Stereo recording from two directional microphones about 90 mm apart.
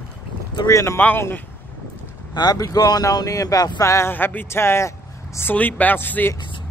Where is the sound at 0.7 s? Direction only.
35° left (ahead or behind).